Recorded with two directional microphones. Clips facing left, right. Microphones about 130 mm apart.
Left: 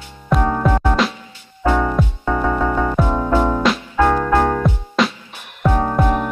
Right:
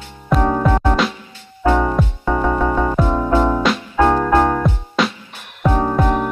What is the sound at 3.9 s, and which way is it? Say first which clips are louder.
Music: right 2 dB; 20° right (ahead or behind).